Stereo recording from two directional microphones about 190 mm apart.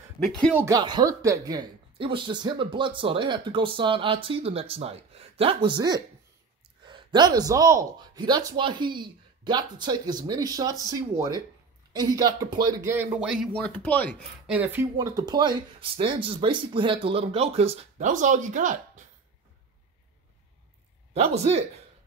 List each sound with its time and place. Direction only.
0.2 s speech: centre (ahead or behind)
0.6 s speech: 20° right (ahead or behind); by 14.1 s 10° left (ahead or behind)
14.5 s speech: 10° right (ahead or behind); by 19.0 s 40° right (ahead or behind)
21.1 s speech: 35° right (ahead or behind)